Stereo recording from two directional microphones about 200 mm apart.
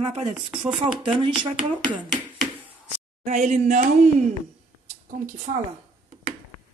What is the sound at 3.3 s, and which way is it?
Speech, 35° right (ahead or behind).